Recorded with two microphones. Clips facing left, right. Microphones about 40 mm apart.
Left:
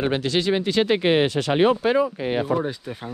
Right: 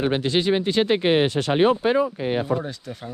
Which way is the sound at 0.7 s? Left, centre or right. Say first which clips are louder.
Even; left.